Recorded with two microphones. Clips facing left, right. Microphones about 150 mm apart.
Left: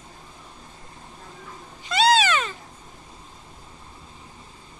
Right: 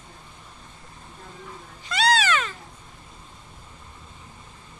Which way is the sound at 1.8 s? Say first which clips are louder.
Left 3 dB; 25° left (ahead or behind).